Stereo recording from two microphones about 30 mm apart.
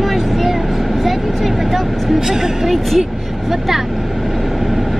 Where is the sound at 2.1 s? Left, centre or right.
Centre.